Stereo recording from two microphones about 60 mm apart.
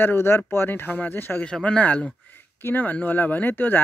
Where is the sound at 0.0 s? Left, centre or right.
Left.